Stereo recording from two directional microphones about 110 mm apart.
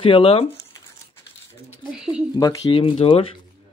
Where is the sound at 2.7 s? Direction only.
55° left (ahead or behind).